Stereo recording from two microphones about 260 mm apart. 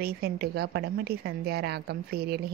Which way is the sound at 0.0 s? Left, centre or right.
Right.